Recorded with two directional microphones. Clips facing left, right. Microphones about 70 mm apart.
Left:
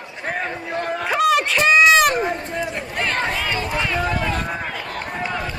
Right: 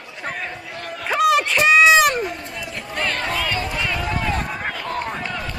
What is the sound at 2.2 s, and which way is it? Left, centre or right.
Run, left.